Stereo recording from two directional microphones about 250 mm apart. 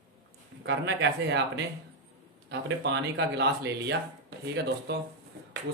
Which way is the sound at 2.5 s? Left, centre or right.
Right.